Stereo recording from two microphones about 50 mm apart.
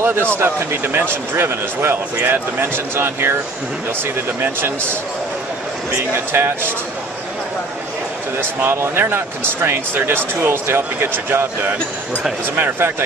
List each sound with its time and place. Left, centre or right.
0.0 s speech: right
4.4 s speech: right
6.1 s speech: right
8.4 s speech: right